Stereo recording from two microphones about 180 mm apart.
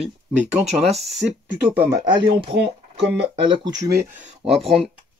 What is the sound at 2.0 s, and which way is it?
Speech, 25° right (ahead or behind).